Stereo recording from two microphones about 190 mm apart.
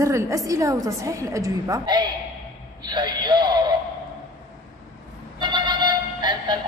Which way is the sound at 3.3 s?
25° right (ahead or behind).